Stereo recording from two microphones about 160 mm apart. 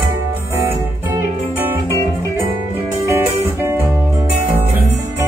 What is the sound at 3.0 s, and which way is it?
Music, 15° right (ahead or behind).